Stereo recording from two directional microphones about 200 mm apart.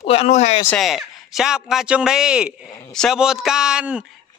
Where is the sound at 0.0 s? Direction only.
30° left (ahead or behind).